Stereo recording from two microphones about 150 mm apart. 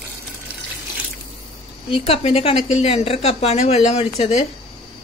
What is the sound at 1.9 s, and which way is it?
A woman's voice, 40° left (ahead or behind).